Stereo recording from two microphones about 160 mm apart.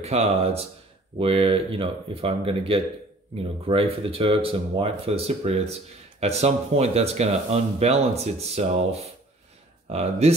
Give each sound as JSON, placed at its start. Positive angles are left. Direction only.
{"t": 0.0, "sound": "speech", "side_deg": -40}